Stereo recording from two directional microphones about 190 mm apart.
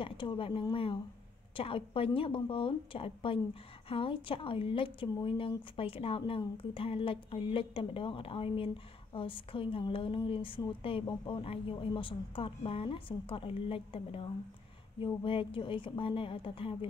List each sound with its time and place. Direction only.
0.0 s a woman's voice: 25° left (ahead or behind)